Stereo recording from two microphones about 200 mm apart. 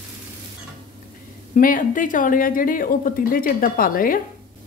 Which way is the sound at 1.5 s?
45° left (ahead or behind).